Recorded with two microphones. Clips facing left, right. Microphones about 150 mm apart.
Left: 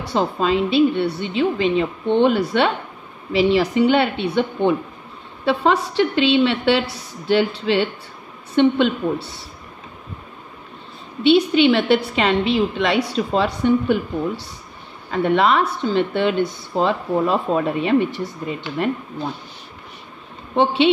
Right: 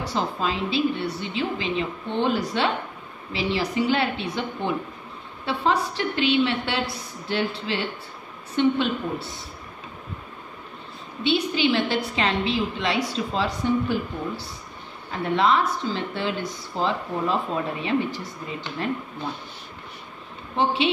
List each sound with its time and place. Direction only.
0.1 s a woman's voice: 65° left (ahead or behind)
11.2 s a woman's voice: 70° left (ahead or behind)
20.5 s a woman's voice: 65° left (ahead or behind)